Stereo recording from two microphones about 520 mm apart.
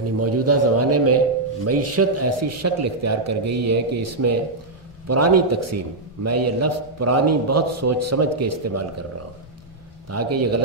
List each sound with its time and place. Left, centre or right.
0.2 s a man's voice: right
10.0 s a man's voice: right